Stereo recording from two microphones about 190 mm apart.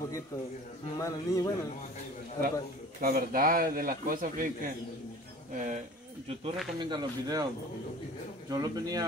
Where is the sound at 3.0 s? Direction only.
50° right (ahead or behind).